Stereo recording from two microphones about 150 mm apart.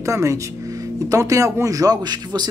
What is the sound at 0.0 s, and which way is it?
Speech, 20° right (ahead or behind).